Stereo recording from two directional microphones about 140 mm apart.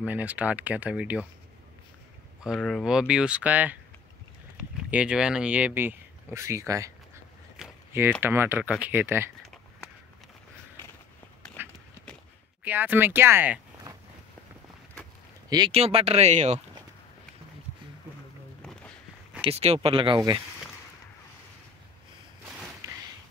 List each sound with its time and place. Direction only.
0.0 s speech: 10° right (ahead or behind)
2.4 s speech: centre (ahead or behind); by 6.9 s 25° right (ahead or behind)
8.2 s speech: 15° right (ahead or behind)
12.6 s speech: 15° right (ahead or behind)
15.7 s speech: 45° right (ahead or behind)
18.6 s a sound: 5° left (ahead or behind)
19.4 s speech: 50° right (ahead or behind)
22.8 s a sound: 25° right (ahead or behind)